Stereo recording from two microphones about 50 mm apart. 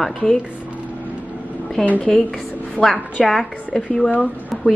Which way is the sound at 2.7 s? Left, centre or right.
Centre.